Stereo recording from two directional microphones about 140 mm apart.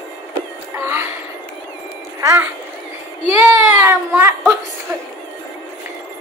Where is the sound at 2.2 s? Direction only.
20° right (ahead or behind).